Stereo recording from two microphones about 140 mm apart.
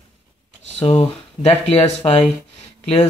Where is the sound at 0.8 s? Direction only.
45° left (ahead or behind).